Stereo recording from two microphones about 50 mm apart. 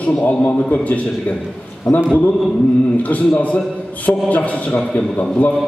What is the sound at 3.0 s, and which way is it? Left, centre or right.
A man's voice, left.